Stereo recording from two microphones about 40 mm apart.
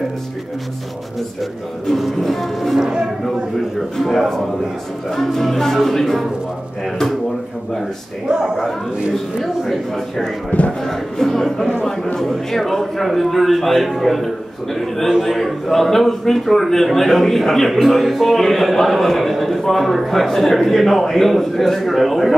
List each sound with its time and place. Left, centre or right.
2.0 s a man's voice: centre
3.3 s a man's voice: centre
8.3 s speech: centre
9.1 s speech: centre
10.5 s speech: left
10.9 s a man's voice: centre